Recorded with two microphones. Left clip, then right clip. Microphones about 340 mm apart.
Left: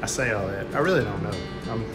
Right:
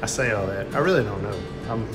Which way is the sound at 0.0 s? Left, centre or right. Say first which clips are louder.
Right 2 dB; centre.